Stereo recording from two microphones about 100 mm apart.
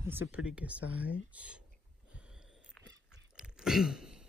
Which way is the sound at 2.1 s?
10° right (ahead or behind).